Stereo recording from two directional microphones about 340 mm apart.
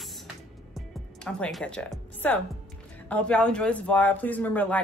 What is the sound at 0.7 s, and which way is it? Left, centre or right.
Music, centre.